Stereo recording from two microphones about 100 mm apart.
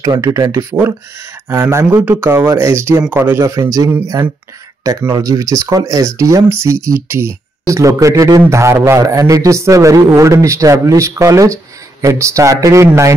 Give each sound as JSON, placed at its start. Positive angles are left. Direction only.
{"t": 0.0, "sound": "a man's voice", "side_deg": -35}
{"t": 5.1, "sound": "a man's voice", "side_deg": -40}